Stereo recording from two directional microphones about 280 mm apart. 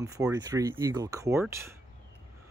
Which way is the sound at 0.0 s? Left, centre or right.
Centre.